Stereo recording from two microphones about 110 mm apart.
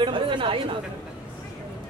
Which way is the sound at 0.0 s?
50° right (ahead or behind).